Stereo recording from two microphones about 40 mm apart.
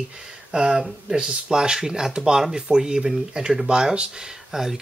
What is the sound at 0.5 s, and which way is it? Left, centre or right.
Speech, centre.